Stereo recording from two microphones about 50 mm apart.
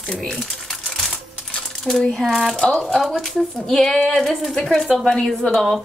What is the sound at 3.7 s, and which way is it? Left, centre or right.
A woman's voice, centre.